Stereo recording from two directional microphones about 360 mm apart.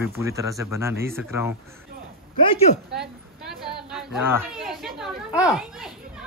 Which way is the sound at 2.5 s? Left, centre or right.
Centre.